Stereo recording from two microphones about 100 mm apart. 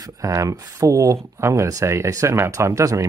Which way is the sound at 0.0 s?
35° right (ahead or behind).